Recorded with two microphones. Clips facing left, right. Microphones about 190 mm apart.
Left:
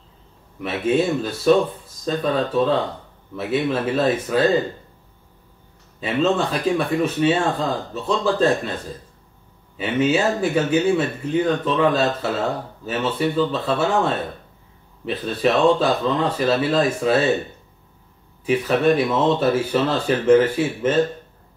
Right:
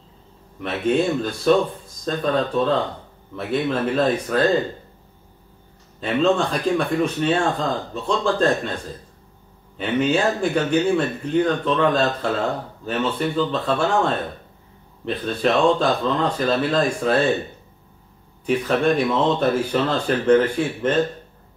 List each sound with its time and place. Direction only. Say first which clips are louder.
0.6 s speech: even; 5° left (ahead or behind)
5.9 s speech: right 1 dB; 5° left (ahead or behind)
9.8 s speech: left 1 dB; 5° left (ahead or behind)
18.4 s speech: left 1 dB; 5° left (ahead or behind)